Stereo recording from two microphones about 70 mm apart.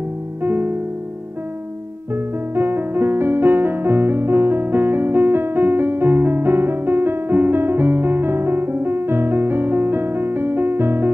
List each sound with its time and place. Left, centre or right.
0.4 s music: right
2.5 s music: right